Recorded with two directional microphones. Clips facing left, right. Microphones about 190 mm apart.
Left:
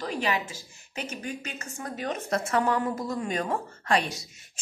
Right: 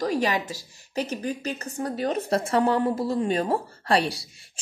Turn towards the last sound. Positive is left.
turn(degrees=-35)  # may be behind; listen again after turning